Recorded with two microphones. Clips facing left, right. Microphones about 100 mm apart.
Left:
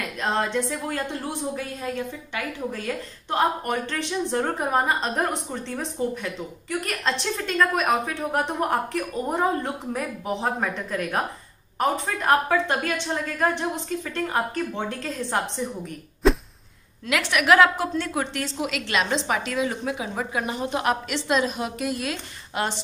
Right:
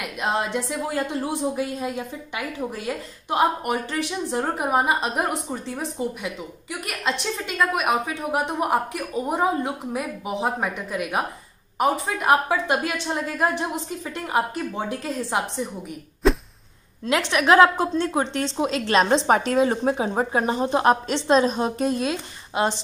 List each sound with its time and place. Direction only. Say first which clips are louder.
0.0 s a woman's voice: even; 15° right (ahead or behind)
16.2 s a sound: even; centre (ahead or behind)
17.0 s a woman's voice: right 2 dB; 25° right (ahead or behind)